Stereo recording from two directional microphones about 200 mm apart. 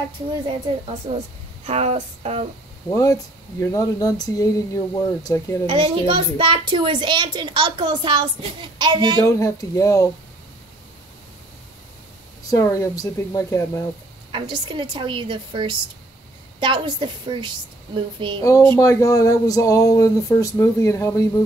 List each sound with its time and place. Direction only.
1.1 s a child's voice: 25° right (ahead or behind)
1.7 s a sound: 35° right (ahead or behind)
2.9 s speech: 15° left (ahead or behind)
5.7 s a child's voice: 30° right (ahead or behind)
9.2 s speech: 15° left (ahead or behind)
12.4 s speech: 15° left (ahead or behind)
14.3 s a child's voice: 25° right (ahead or behind)
18.7 s speech: 15° left (ahead or behind)